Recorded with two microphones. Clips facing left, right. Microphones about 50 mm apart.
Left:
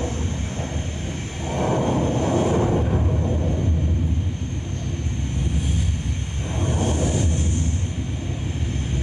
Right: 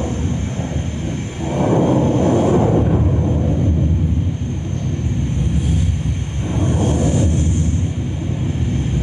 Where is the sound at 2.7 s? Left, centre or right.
Right.